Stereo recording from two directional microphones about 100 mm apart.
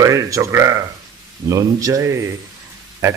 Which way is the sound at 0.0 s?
35° right (ahead or behind).